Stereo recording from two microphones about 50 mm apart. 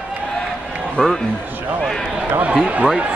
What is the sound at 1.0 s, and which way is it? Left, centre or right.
Speech, centre.